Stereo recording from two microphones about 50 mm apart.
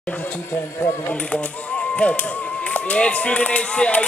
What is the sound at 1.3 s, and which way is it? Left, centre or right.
Speech, left.